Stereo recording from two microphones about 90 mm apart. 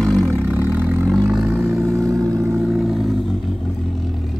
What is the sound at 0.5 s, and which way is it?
Vehicle, 20° right (ahead or behind).